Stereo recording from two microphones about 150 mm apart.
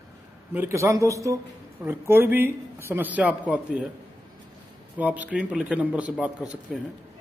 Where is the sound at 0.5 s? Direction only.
15° right (ahead or behind).